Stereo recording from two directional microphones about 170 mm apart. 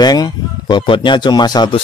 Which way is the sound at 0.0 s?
25° left (ahead or behind).